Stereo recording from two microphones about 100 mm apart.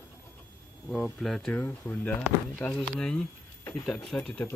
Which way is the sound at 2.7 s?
5° left (ahead or behind).